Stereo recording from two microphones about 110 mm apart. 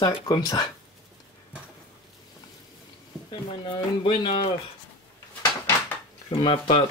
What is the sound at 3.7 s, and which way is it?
Speech, 45° left (ahead or behind).